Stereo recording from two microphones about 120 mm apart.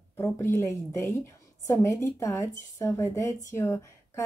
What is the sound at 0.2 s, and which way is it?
A woman's voice, 20° left (ahead or behind).